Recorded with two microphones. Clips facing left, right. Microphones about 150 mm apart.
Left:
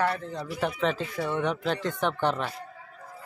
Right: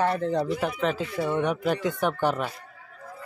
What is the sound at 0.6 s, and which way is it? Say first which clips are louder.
Speech: right 1 dB; 5° right (ahead or behind).